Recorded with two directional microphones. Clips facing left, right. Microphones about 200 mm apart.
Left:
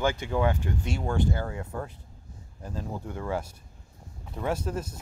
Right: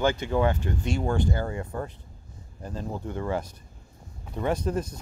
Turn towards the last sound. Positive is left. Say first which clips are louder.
# right 3 dB
turn(degrees=5)  # may be behind; listen again after turning